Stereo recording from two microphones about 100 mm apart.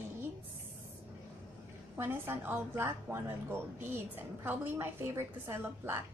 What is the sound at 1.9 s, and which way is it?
A woman's voice, 25° right (ahead or behind).